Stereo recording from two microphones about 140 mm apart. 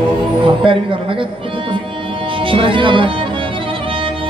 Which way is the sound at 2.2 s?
40° right (ahead or behind).